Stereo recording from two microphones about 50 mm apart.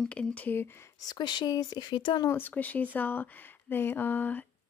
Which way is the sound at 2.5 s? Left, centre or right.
Left.